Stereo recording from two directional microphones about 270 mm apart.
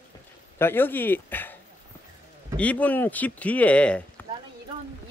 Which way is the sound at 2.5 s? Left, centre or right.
Centre.